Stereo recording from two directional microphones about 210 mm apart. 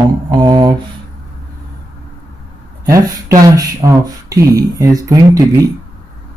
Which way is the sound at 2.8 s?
15° right (ahead or behind).